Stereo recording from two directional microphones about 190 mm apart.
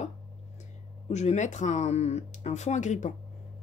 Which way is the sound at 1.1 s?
35° left (ahead or behind).